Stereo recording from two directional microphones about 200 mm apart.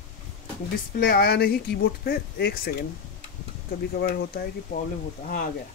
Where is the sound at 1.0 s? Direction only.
50° left (ahead or behind).